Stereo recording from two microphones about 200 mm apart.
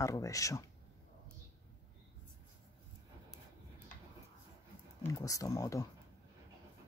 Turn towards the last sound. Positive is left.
turn(degrees=15)  # may be behind; listen again after turning